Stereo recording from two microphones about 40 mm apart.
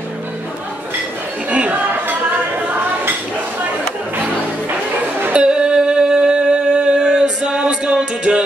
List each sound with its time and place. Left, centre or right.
1.5 s chatter: right
5.3 s humming: right